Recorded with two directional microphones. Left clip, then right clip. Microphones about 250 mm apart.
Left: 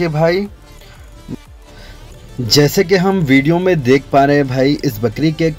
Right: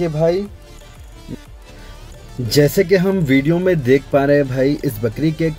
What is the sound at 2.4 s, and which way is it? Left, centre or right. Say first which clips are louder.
Speech: left 2 dB; centre.